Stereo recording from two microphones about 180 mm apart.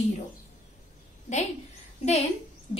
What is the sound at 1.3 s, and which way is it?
Speech, 40° left (ahead or behind).